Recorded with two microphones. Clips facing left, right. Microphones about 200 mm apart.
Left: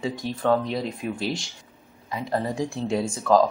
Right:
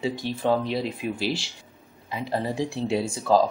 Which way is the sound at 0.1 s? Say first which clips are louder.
Left 1 dB; 30° right (ahead or behind).